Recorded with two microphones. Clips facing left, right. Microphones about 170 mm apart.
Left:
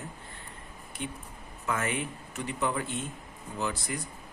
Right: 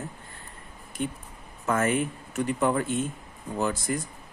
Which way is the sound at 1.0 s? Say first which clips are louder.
Right 7 dB; 45° right (ahead or behind).